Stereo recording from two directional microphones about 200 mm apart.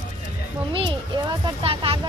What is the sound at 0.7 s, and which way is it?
A child's voice, 25° right (ahead or behind).